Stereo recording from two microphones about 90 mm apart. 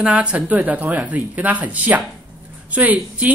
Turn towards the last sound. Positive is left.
turn(degrees=-20)  # may be behind; listen again after turning